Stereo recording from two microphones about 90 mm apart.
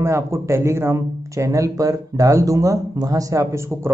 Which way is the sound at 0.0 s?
30° right (ahead or behind).